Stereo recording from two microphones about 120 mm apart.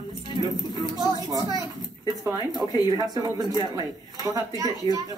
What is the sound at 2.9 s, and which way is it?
Speech, 30° right (ahead or behind).